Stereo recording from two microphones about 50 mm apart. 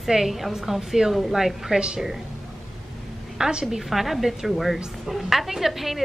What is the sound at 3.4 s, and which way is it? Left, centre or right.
Speech, centre.